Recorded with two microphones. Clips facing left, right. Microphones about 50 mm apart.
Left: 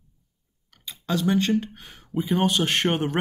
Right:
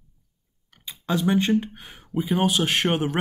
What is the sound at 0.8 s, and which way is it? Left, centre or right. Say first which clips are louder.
Speech: right 1 dB; centre.